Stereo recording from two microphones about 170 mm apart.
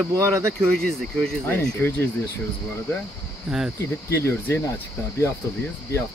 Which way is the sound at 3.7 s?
15° left (ahead or behind).